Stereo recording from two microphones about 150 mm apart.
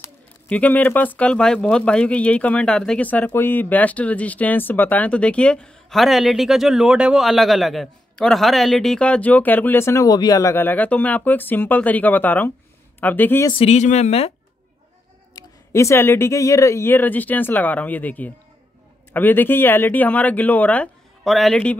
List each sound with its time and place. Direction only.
0.0 s speech: 10° left (ahead or behind)
13.5 s speech: 40° left (ahead or behind)
15.7 s speech: 20° left (ahead or behind); by 21.5 s centre (ahead or behind)